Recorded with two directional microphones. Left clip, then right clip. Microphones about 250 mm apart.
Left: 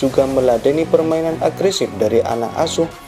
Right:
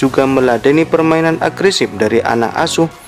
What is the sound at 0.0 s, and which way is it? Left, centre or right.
Speech, right.